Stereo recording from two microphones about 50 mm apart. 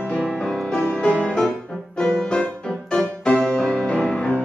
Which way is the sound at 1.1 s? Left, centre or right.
Left.